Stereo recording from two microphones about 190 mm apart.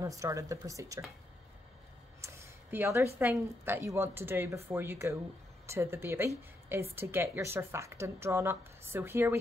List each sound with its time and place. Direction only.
0.0 s speech: 15° right (ahead or behind)
2.2 s a sound: 15° right (ahead or behind)
3.2 s speech: 10° right (ahead or behind)